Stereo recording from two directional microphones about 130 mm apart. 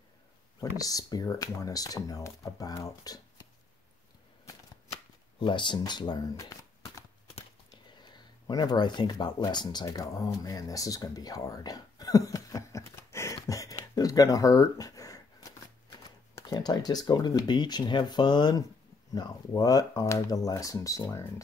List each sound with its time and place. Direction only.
0.6 s speech: 30° left (ahead or behind)
5.4 s speech: 35° left (ahead or behind)
7.7 s speech: 35° left (ahead or behind)
9.9 s a sound: 25° left (ahead or behind)
16.3 s speech: 30° left (ahead or behind)